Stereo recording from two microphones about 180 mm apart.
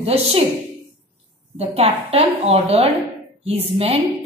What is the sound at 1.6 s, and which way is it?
A woman's voice, 35° right (ahead or behind).